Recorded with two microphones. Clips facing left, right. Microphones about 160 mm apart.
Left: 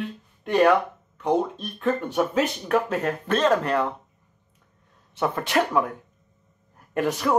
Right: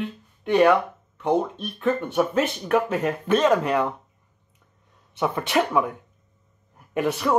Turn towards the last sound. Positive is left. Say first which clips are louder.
# even
turn(degrees=0)  # may be behind; listen again after turning